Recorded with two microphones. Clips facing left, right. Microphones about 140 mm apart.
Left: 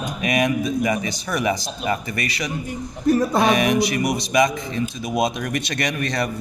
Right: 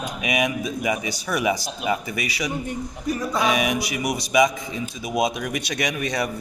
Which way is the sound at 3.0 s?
55° left (ahead or behind).